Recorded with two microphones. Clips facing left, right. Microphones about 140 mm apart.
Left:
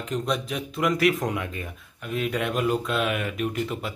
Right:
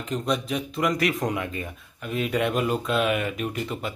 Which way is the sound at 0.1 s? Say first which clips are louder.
Right 2 dB; centre (ahead or behind).